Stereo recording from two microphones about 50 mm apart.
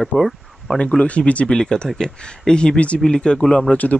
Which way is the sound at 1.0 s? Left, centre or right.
Left.